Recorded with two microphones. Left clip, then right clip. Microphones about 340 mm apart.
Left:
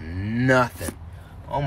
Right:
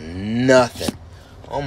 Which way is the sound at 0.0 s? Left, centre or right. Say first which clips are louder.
Right 5 dB; centre.